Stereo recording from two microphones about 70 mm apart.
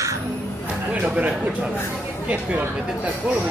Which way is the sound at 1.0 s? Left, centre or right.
Centre.